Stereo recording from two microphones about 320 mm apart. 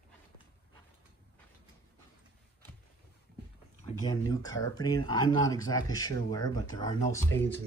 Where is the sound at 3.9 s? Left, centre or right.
Centre.